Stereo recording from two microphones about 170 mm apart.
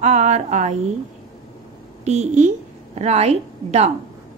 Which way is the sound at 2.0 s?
45° right (ahead or behind).